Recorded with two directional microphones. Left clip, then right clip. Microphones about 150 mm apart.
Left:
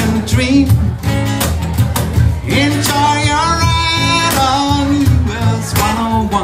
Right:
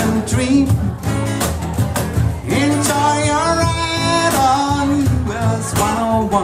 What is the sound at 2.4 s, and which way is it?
Music, 45° right (ahead or behind).